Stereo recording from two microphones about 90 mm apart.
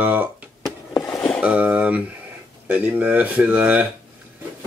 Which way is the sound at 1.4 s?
15° right (ahead or behind).